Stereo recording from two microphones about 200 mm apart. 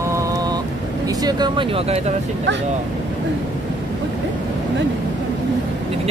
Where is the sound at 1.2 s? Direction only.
25° right (ahead or behind).